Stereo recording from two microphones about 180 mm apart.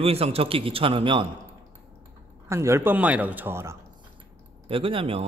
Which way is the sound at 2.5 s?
15° right (ahead or behind).